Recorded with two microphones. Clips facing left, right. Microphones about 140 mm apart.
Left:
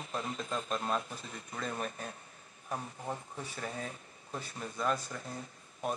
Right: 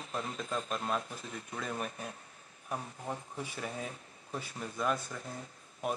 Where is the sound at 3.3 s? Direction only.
10° right (ahead or behind).